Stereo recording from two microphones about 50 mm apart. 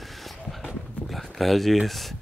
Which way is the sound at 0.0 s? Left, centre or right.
Centre.